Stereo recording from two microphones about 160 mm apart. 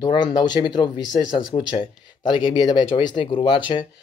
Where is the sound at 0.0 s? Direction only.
25° left (ahead or behind).